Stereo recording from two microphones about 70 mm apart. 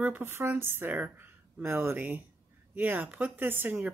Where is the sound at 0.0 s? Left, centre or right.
Right.